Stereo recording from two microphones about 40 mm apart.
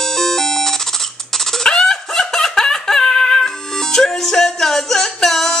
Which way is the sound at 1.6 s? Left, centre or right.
Centre.